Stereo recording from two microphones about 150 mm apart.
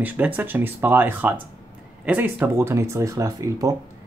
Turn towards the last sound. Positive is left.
turn(degrees=-25)  # may be behind; listen again after turning